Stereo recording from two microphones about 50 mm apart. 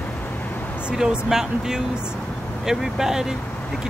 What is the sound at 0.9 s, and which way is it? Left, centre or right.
Speech, centre.